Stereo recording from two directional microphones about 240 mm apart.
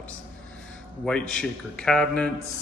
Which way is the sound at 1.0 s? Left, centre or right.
Centre.